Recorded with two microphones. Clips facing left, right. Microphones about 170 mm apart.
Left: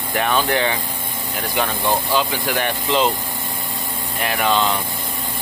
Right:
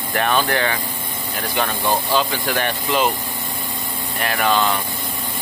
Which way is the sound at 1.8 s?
15° right (ahead or behind).